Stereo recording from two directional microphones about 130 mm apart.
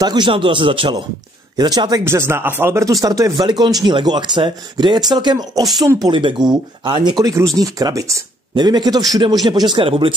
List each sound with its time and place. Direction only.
0.0 s speech: 35° right (ahead or behind)
5.6 s speech: centre (ahead or behind)
5.9 s speech: 30° right (ahead or behind)